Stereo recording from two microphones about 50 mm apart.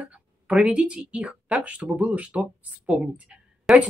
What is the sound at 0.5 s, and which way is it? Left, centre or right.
Speech, right.